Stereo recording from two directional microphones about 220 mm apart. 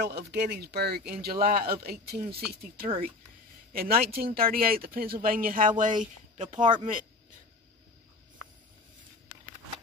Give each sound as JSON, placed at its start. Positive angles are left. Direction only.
{"t": 0.0, "sound": "speech", "side_deg": -50}
{"t": 6.8, "sound": "speech", "side_deg": -35}